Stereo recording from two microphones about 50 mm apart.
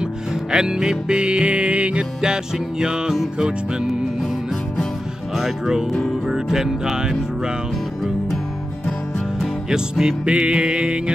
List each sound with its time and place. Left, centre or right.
0.0 s music: centre
5.3 s speech: centre
6.2 s music: centre
9.7 s music: centre